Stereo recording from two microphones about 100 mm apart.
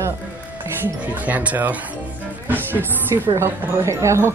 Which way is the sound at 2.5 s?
20° right (ahead or behind).